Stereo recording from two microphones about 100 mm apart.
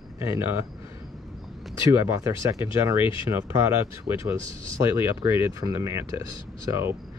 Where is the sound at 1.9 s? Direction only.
30° right (ahead or behind).